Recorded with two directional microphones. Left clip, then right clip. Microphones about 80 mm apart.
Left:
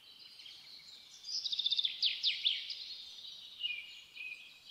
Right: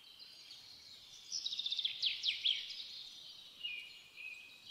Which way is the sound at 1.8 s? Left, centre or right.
Centre.